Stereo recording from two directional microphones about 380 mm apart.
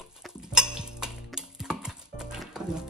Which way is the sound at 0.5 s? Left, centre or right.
Centre.